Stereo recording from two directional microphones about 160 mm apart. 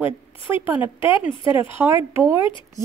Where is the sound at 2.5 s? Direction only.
30° left (ahead or behind).